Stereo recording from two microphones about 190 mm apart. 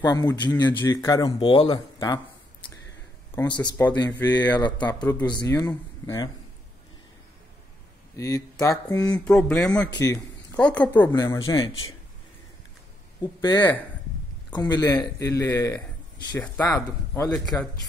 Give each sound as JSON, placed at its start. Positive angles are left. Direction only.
{"t": 0.0, "sound": "speech", "side_deg": 20}
{"t": 3.3, "sound": "speech", "side_deg": 25}
{"t": 3.7, "sound": "speech", "side_deg": 10}
{"t": 4.6, "sound": "speech", "side_deg": 25}
{"t": 4.9, "sound": "speech", "side_deg": 10}
{"t": 8.2, "sound": "speech", "side_deg": 15}
{"t": 9.1, "sound": "speech", "side_deg": 5}
{"t": 13.2, "sound": "speech", "side_deg": 25}
{"t": 13.6, "sound": "speech", "side_deg": 10}
{"t": 14.5, "sound": "speech", "side_deg": 20}